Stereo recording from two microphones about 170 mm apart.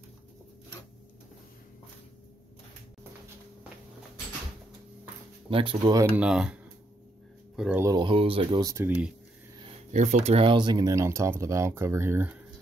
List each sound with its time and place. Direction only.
5.5 s speech: 30° right (ahead or behind)
6.1 s speech: 5° right (ahead or behind)
7.8 s speech: 25° right (ahead or behind)
8.7 s speech: 10° right (ahead or behind)
9.9 s speech: 40° right (ahead or behind); by 12.4 s 10° right (ahead or behind)